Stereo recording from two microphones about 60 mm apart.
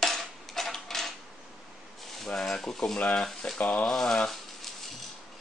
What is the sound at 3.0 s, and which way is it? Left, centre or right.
Speech, left.